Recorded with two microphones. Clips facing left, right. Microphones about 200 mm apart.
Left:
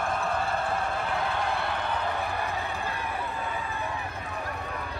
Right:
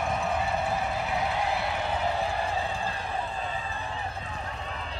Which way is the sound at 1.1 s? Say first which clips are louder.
Right 1 dB; 20° right (ahead or behind).